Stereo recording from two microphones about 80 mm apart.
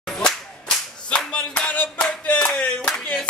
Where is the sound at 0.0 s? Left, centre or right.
Centre.